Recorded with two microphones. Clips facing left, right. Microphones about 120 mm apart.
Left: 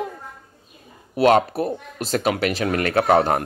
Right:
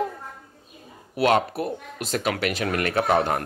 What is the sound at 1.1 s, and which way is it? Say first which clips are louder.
Speech: left 4 dB; 35° left (ahead or behind).